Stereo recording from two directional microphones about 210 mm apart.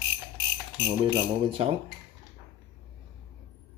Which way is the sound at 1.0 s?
25° right (ahead or behind).